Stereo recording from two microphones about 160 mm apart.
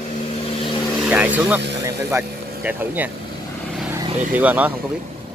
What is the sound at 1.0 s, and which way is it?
Vehicle, 10° right (ahead or behind).